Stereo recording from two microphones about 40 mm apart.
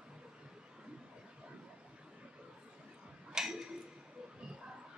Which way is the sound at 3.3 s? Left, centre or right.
Centre.